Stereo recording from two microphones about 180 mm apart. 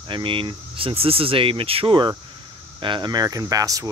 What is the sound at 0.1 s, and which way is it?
Speech, 30° right (ahead or behind).